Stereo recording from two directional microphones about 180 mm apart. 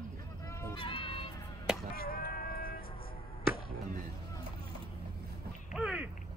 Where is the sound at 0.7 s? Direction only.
30° left (ahead or behind).